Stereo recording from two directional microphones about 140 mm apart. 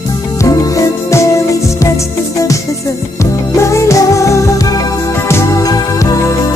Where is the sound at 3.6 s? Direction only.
20° left (ahead or behind).